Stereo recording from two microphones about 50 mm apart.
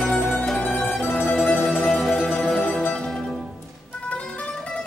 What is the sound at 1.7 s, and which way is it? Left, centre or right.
Music, centre.